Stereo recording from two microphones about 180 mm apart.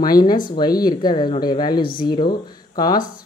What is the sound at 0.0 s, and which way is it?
Speech, 20° left (ahead or behind).